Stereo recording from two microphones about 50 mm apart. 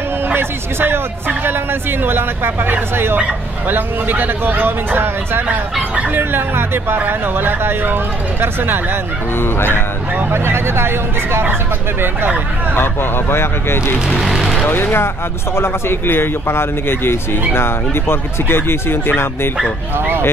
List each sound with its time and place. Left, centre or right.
0.3 s speech: right
9.4 s a man's voice: left
10.3 s speech: right
12.7 s a man's voice: left
14.0 s speech: centre
14.7 s a man's voice: left